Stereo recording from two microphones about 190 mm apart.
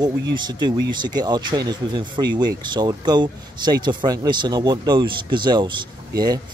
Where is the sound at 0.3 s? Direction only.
25° right (ahead or behind).